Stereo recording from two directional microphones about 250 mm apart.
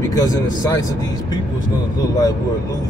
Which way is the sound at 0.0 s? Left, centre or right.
Centre.